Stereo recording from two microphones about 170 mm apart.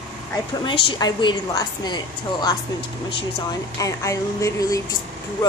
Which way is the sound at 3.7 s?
20° left (ahead or behind).